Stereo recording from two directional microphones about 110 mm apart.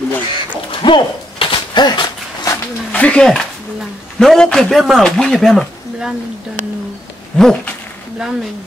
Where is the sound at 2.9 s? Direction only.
10° left (ahead or behind).